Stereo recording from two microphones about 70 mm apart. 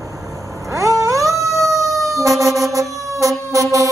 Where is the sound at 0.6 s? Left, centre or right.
Right.